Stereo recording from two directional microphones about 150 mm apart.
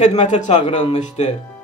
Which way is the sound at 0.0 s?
45° left (ahead or behind).